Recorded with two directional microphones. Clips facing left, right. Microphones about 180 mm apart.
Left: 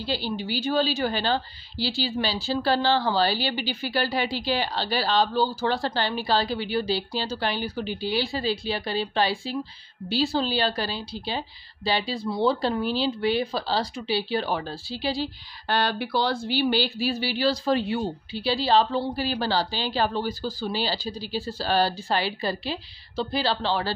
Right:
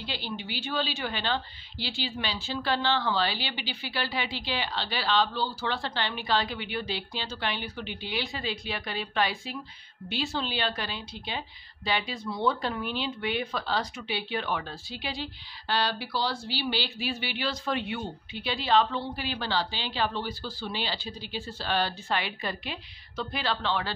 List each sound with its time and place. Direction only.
0.0 s speech: 35° left (ahead or behind)
15.7 s speech: 55° left (ahead or behind); by 23.9 s 35° left (ahead or behind)